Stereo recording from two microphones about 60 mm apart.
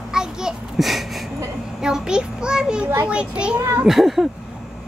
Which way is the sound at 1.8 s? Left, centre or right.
Centre.